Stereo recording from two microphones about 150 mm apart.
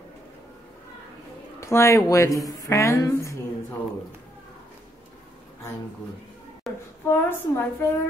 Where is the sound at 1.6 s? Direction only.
20° left (ahead or behind).